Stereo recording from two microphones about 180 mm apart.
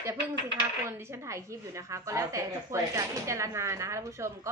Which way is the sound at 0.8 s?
15° right (ahead or behind).